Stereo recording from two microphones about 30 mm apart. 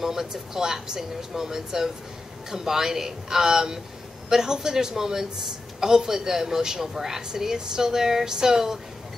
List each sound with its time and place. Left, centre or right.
0.0 s speech: centre